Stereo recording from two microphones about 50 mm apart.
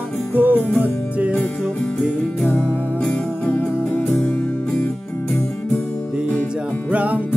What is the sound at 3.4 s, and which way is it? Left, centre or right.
Music, left.